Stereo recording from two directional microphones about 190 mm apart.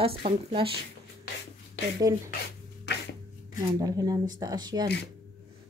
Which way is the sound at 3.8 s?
20° right (ahead or behind).